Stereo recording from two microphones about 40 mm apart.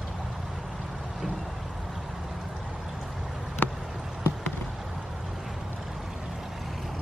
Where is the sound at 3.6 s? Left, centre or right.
Left.